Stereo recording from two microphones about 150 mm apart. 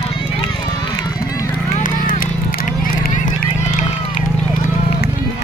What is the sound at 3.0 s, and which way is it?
Run, 60° left (ahead or behind).